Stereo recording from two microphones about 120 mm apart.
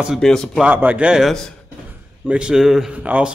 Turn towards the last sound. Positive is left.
turn(degrees=-10)  # may be behind; listen again after turning